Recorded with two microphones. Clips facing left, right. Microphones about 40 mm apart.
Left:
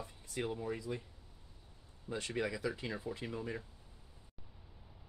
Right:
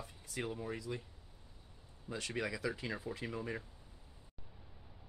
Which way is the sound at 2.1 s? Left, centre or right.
Centre.